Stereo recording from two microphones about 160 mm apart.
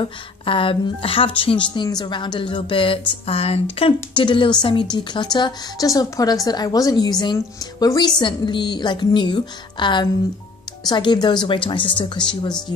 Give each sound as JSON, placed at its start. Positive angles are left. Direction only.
{"t": 0.0, "sound": "a woman's voice", "side_deg": 35}